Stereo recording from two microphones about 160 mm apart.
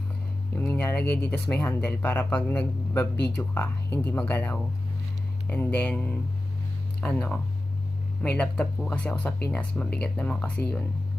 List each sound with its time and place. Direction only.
0.6 s speech: 15° left (ahead or behind)
1.0 s speech: 90° left
1.6 s a man's voice: 10° left (ahead or behind)